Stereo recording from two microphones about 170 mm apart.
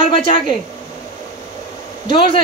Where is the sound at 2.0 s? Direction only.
30° left (ahead or behind).